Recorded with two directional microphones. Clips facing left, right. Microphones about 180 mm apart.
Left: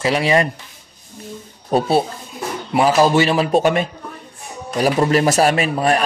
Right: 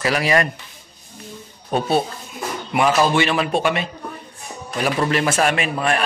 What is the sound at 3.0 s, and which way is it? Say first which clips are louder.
A man's voice: left 3 dB; 35° left (ahead or behind).